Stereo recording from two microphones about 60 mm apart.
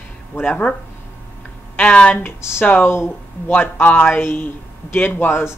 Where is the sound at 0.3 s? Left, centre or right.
Left.